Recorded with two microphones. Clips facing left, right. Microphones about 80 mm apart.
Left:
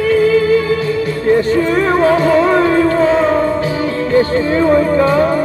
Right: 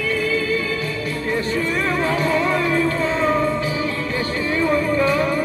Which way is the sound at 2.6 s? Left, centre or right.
Left.